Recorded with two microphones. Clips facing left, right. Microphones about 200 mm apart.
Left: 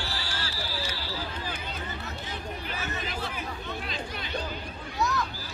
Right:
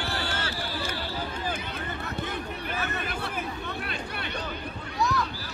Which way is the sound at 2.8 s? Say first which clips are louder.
Right 3 dB; 60° right (ahead or behind).